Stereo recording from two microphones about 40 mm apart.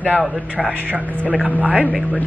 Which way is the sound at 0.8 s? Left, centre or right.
Right.